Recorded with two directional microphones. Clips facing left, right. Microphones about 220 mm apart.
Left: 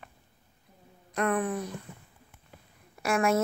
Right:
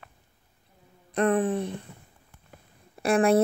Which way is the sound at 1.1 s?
30° right (ahead or behind).